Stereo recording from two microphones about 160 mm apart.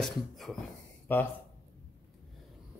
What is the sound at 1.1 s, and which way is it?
Speech, 10° left (ahead or behind).